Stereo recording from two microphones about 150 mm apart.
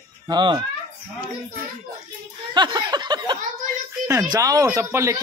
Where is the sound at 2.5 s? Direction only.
30° right (ahead or behind).